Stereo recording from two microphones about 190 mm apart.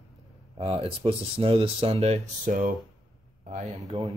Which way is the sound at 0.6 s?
30° right (ahead or behind).